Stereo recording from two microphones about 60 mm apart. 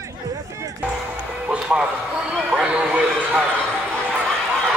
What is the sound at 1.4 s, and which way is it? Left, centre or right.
Music, centre.